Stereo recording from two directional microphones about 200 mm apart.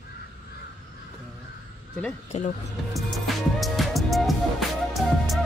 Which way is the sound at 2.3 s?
35° left (ahead or behind).